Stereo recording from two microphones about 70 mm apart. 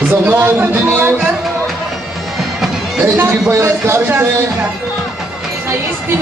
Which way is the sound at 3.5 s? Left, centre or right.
Right.